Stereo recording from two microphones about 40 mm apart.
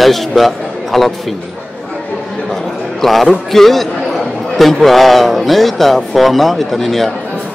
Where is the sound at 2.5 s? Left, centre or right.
Centre.